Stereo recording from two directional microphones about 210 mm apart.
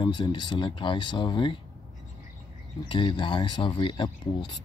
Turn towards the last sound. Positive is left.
turn(degrees=20)  # may be behind; listen again after turning